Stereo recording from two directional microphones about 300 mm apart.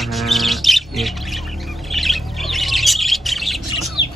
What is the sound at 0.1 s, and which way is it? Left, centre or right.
Bird, centre.